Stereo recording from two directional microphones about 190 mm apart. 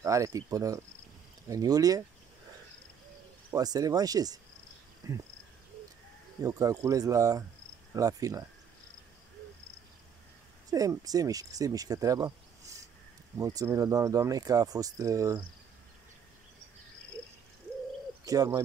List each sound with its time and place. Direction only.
0.0 s speech: 15° right (ahead or behind)
3.5 s speech: 20° right (ahead or behind)
5.0 s cricket: 20° right (ahead or behind)
6.4 s speech: 20° right (ahead or behind)
10.7 s speech: 20° right (ahead or behind)
18.2 s bird: 20° right (ahead or behind)